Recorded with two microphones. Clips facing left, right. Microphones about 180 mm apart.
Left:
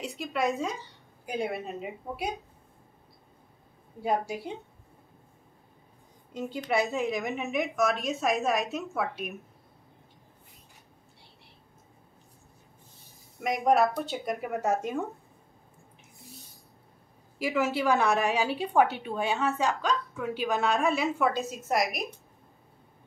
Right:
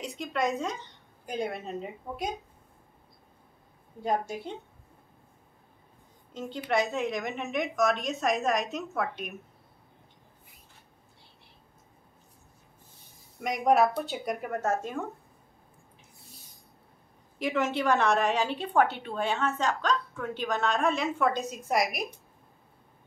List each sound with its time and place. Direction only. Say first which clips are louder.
0.0 s a woman's voice: left 1 dB; centre (ahead or behind)
4.0 s a woman's voice: left 1 dB; 10° left (ahead or behind)
6.3 s a woman's voice: even; 10° left (ahead or behind)
13.4 s a woman's voice: even; centre (ahead or behind)
14.6 s a woman's voice: left 2 dB; 15° left (ahead or behind)
17.4 s a woman's voice: left 1 dB; 5° left (ahead or behind)